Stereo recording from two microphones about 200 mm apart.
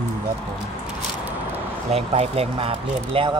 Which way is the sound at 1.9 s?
30° right (ahead or behind).